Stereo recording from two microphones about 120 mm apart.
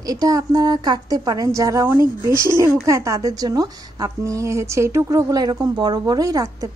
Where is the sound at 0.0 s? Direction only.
30° right (ahead or behind).